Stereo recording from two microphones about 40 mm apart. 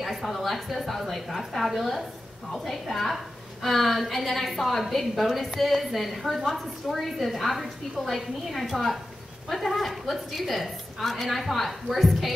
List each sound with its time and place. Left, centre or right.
0.0 s a woman's voice: centre